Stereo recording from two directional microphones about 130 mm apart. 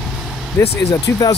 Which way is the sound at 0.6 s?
25° left (ahead or behind).